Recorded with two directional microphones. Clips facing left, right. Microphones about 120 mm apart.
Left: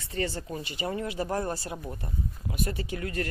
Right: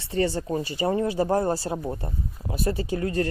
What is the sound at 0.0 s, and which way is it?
Speech, 30° right (ahead or behind).